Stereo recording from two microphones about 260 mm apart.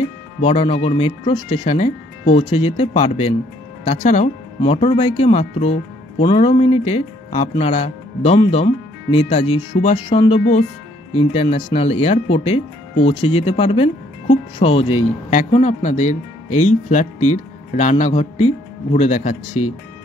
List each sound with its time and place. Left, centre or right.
0.4 s speech: left